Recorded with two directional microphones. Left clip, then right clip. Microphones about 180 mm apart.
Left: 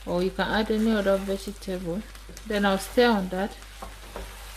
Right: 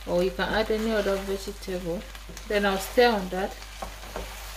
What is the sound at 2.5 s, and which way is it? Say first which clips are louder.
Speech: even; 45° left (ahead or behind).